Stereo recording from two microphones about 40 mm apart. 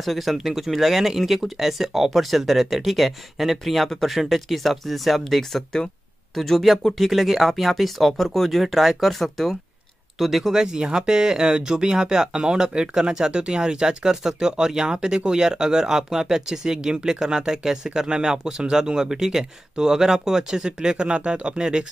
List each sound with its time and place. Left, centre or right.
0.0 s speech: centre
10.5 s speech: centre